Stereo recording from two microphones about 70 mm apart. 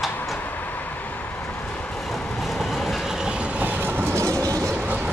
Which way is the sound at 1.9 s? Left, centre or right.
Centre.